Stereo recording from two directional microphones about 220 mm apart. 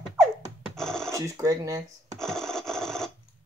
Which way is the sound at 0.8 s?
Centre (ahead or behind).